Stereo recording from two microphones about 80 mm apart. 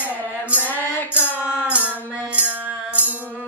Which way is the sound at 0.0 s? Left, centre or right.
Centre.